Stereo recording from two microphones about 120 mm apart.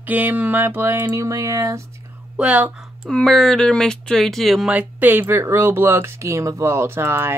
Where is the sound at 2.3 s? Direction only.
10° right (ahead or behind).